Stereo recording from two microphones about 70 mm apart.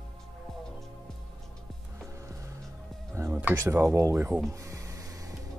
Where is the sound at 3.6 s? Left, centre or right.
Right.